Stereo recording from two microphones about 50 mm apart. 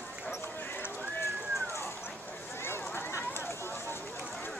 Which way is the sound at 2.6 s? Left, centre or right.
Left.